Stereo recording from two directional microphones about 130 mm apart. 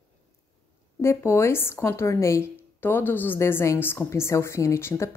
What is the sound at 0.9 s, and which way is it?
Speech, 20° left (ahead or behind).